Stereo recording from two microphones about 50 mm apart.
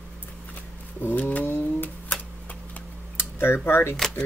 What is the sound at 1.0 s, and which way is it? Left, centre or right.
Speech, left.